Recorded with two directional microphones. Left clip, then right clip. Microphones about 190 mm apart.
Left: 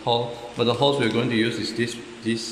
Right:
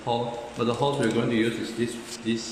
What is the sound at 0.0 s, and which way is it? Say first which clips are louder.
A man's voice: left 4 dB; 35° left (ahead or behind).